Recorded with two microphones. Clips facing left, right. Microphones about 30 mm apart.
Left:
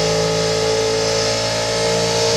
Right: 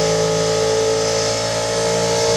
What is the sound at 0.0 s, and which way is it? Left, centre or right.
Vehicle, left.